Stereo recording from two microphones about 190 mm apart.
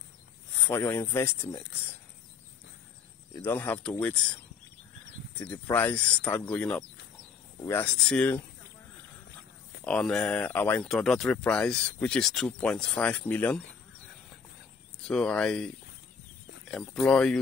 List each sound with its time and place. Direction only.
0.7 s speech: 10° left (ahead or behind)
3.3 s speech: 10° left (ahead or behind)
5.4 s speech: 10° left (ahead or behind)
9.8 s speech: 5° left (ahead or behind)
15.0 s speech: 5° left (ahead or behind)
16.7 s speech: centre (ahead or behind)